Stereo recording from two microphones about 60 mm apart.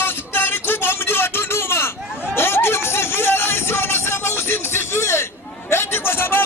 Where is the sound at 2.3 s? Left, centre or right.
Left.